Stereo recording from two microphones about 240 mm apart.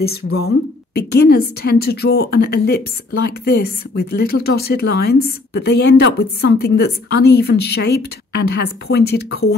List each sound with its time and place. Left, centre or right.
0.9 s a woman's voice: left